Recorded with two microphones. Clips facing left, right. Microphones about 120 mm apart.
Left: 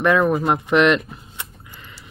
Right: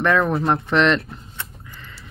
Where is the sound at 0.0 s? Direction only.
10° left (ahead or behind).